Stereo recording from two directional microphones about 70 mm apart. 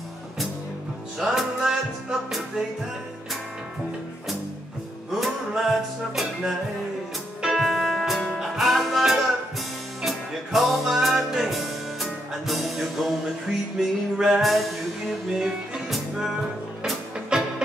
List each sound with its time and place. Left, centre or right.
1.2 s music: centre
5.2 s music: centre